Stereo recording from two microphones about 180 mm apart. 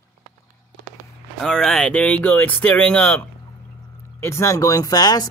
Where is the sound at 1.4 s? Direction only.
5° left (ahead or behind).